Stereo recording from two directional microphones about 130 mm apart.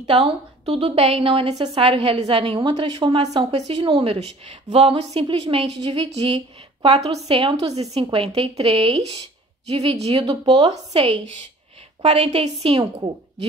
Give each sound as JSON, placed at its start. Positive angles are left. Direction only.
{"t": 0.0, "sound": "a woman's voice", "side_deg": -45}
{"t": 3.5, "sound": "a woman's voice", "side_deg": -50}